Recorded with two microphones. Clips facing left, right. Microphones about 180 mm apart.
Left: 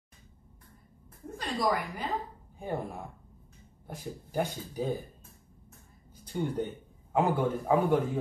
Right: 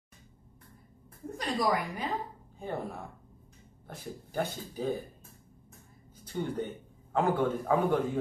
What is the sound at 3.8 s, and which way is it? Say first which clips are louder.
Speech: left 2 dB; 15° left (ahead or behind).